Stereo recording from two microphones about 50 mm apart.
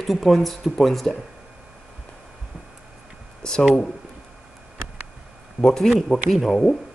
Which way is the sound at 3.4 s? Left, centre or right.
Centre.